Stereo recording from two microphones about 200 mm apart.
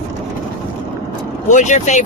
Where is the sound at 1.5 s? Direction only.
35° left (ahead or behind).